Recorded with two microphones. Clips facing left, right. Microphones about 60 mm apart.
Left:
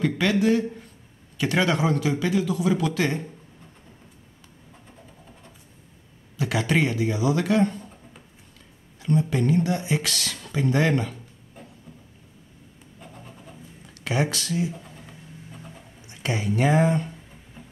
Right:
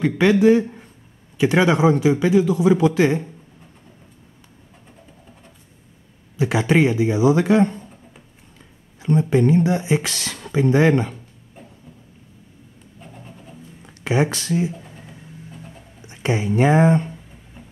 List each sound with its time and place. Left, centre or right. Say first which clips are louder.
0.0 s speech: right 7 dB; right
6.3 s speech: right 6 dB; right
9.0 s speech: right 6 dB; right
13.0 s vehicle: right 2 dB; right
13.8 s speech: right 5 dB; right
16.1 s speech: right 5 dB; right